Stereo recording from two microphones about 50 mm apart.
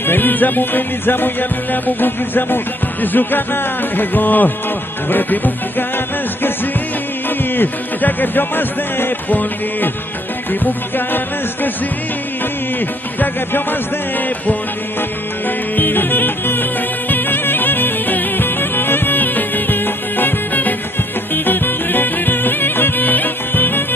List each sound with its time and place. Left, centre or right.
0.0 s music: left
7.2 s music: left
13.2 s music: left
15.7 s music: left